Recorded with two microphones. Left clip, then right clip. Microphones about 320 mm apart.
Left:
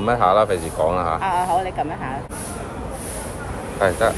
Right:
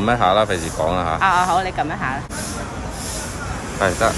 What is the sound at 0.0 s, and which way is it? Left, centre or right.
Speech, centre.